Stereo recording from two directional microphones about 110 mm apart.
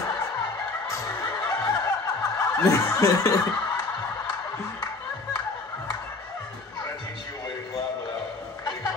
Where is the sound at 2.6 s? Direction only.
30° left (ahead or behind).